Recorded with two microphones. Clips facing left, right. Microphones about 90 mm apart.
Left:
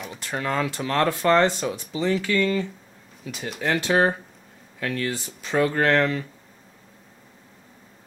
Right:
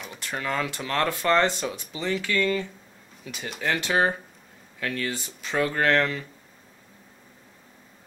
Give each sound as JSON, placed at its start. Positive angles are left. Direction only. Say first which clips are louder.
{"t": 0.3, "sound": "speech", "louder": "left 3 dB", "side_deg": 25}
{"t": 1.4, "sound": "speech", "louder": "left 3 dB", "side_deg": 5}